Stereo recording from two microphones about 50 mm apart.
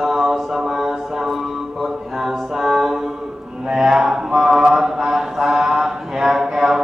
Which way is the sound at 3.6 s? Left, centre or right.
Centre.